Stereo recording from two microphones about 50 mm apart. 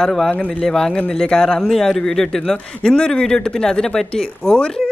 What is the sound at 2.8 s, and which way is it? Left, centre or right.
Speech, centre.